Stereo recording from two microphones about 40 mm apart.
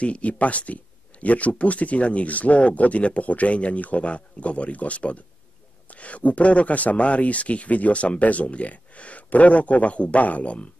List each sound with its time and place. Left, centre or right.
0.0 s speech: left